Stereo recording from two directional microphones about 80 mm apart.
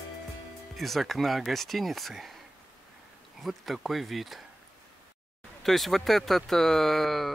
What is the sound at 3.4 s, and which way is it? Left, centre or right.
Speech, centre.